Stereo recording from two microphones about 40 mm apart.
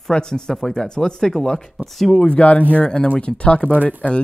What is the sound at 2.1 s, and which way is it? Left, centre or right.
Speech, left.